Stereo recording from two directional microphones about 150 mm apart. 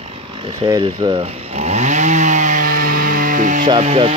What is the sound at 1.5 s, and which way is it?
Chainsaw, 50° right (ahead or behind).